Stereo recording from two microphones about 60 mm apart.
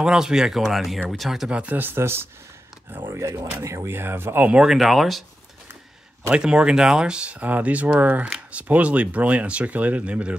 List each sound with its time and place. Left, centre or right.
0.0 s speech: centre
1.5 s speech: right
3.6 s speech: right
3.9 s speech: right
4.5 s speech: centre
4.7 s speech: centre
6.3 s speech: centre